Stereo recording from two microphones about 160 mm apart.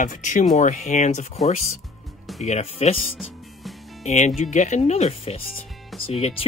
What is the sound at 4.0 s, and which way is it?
Speech, 45° left (ahead or behind).